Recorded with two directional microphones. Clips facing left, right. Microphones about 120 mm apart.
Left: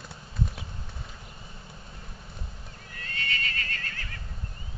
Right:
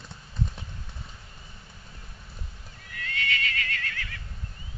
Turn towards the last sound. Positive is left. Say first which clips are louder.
# right 3 dB
turn(degrees=35)  # may be behind; listen again after turning